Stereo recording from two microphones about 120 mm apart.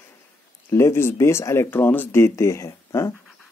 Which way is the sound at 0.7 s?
25° left (ahead or behind).